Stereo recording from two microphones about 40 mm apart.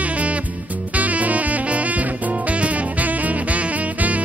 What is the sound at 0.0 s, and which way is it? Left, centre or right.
Music, right.